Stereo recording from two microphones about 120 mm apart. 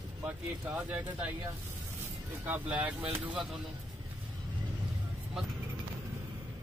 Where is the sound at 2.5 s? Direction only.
10° right (ahead or behind).